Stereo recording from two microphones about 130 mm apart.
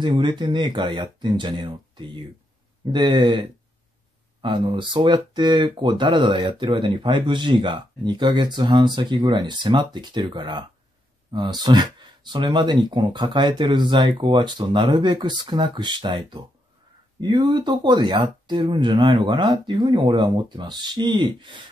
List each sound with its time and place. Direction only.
0.0 s speech: 35° right (ahead or behind)